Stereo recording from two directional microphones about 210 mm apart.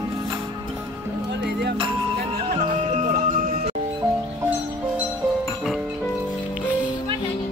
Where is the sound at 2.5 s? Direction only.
35° right (ahead or behind).